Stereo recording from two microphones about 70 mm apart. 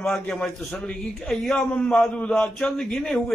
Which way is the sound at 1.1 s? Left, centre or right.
Centre.